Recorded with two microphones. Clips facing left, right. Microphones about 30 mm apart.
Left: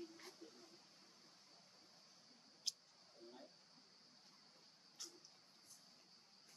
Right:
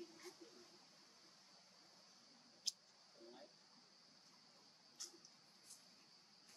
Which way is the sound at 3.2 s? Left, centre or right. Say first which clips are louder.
Left 1 dB; centre.